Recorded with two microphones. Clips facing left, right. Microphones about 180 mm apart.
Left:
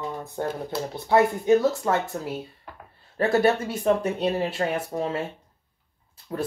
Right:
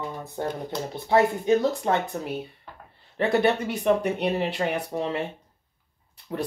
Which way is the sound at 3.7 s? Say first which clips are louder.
Even; 20° right (ahead or behind).